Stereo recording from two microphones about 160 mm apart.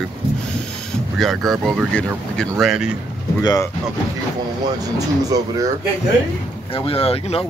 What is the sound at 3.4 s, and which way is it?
Speech, 25° left (ahead or behind).